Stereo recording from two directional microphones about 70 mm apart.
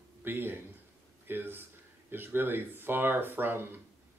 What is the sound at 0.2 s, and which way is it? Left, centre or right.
A man's voice, right.